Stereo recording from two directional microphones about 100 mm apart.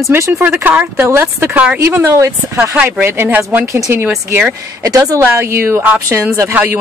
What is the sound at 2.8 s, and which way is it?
Speech, 15° right (ahead or behind).